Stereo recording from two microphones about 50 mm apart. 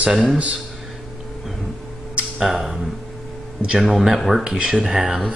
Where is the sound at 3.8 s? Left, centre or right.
Centre.